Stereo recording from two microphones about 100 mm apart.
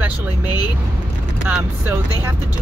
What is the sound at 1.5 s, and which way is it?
Speech, 10° right (ahead or behind).